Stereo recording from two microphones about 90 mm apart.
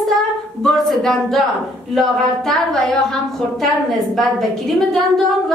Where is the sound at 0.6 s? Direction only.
5° left (ahead or behind).